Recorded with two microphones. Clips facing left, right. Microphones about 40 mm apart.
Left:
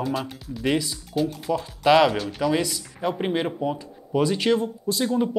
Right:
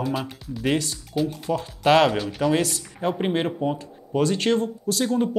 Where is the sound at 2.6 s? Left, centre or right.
Right.